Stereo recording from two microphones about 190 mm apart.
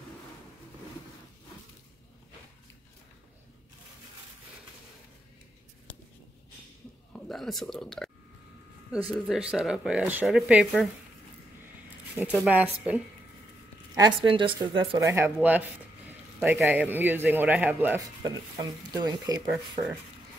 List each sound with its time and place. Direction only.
7.1 s speech: centre (ahead or behind)
9.1 s speech: centre (ahead or behind)
12.2 s speech: 5° right (ahead or behind)
13.9 s speech: 25° right (ahead or behind)
15.0 s a man's voice: 15° right (ahead or behind)
18.2 s speech: 20° right (ahead or behind)